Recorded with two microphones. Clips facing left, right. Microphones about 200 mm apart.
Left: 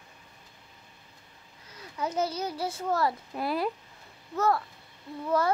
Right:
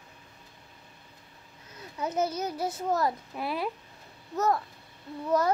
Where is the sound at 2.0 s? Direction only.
20° right (ahead or behind).